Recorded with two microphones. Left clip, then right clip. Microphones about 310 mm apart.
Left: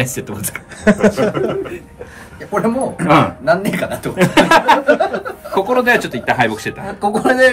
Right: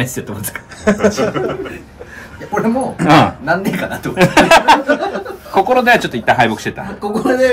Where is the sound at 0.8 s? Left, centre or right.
Left.